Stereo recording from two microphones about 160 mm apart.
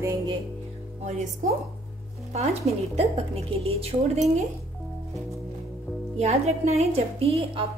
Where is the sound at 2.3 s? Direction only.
40° right (ahead or behind).